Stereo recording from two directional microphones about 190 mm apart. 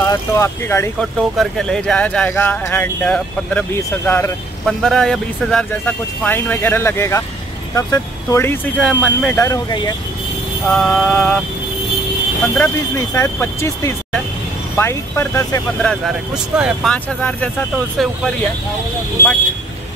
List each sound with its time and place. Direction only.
0.0 s speech: 15° left (ahead or behind)
0.9 s speech: centre (ahead or behind); by 9.9 s 20° left (ahead or behind)
10.7 s speech: 5° left (ahead or behind)
12.5 s speech: 10° left (ahead or behind)
15.8 s speech: centre (ahead or behind)
16.9 s speech: 5° left (ahead or behind)